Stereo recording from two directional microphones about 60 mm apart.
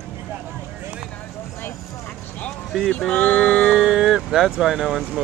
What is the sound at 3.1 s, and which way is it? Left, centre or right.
Speech, left.